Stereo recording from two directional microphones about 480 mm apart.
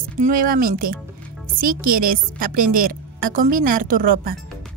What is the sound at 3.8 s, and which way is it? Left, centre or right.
Speech, right.